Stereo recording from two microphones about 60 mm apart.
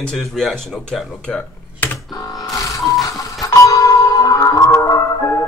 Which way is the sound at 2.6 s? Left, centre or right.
Left.